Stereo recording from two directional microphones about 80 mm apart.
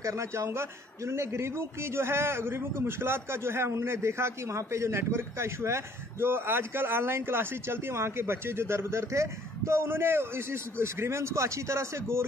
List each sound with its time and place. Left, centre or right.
0.0 s a man's voice: right